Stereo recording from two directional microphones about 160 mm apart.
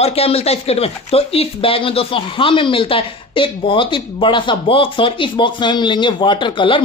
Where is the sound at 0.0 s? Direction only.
40° left (ahead or behind).